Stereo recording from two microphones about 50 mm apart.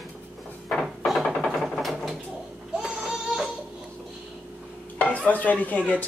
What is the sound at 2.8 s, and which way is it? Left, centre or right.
Baby cry, centre.